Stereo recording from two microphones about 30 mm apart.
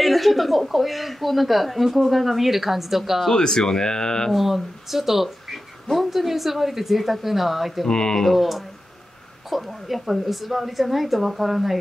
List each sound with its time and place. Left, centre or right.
0.0 s speech: centre
3.3 s speech: left
4.3 s speech: centre
7.9 s speech: left
8.4 s speech: centre